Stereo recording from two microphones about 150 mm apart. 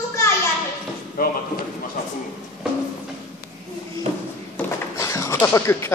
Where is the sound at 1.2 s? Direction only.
70° left (ahead or behind).